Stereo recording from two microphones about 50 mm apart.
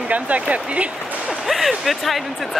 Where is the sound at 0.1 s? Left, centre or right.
Right.